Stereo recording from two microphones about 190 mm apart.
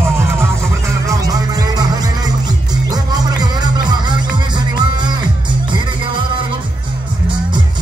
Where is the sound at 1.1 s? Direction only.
20° right (ahead or behind).